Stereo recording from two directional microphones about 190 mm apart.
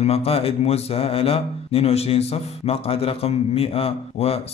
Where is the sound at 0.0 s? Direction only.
30° left (ahead or behind).